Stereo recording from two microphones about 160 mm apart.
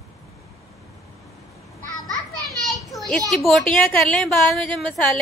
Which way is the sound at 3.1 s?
Centre (ahead or behind).